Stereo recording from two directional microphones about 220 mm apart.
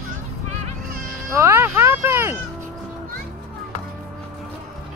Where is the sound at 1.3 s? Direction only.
10° right (ahead or behind).